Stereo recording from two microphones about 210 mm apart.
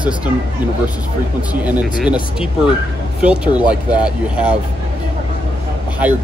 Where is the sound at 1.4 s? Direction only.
5° right (ahead or behind).